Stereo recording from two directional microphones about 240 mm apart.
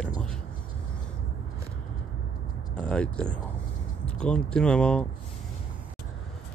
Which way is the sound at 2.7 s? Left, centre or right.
Centre.